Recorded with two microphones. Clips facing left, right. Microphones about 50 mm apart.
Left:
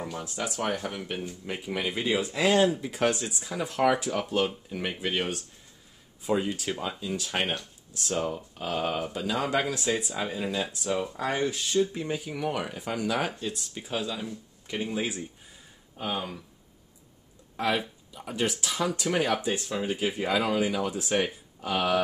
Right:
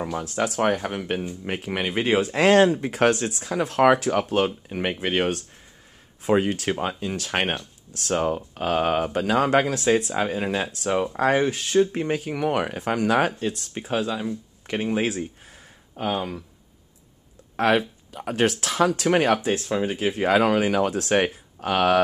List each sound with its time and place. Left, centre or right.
0.2 s speech: right
0.8 s speech: right
4.6 s speech: right
6.2 s speech: right
6.7 s speech: right
7.9 s speech: right
8.2 s speech: right
9.8 s speech: right
17.6 s speech: right